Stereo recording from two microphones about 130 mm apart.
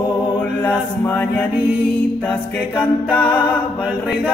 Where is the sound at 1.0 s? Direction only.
15° left (ahead or behind).